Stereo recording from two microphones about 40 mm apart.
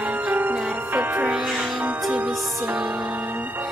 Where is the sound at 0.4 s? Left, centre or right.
Right.